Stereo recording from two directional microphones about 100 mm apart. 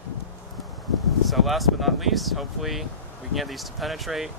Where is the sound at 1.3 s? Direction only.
Centre (ahead or behind).